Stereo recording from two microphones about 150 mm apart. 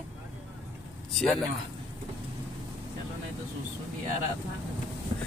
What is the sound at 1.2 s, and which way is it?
Speech, 5° left (ahead or behind).